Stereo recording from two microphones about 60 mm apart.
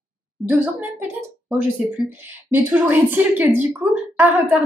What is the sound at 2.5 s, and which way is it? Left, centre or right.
A woman's voice, right.